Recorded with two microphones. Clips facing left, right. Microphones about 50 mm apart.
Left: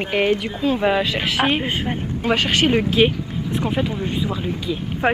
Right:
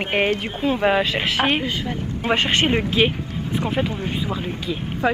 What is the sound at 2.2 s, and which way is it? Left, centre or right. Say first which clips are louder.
Speech: even; right.